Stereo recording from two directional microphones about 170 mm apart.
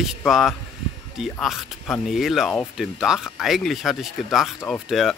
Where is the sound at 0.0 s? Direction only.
Centre (ahead or behind).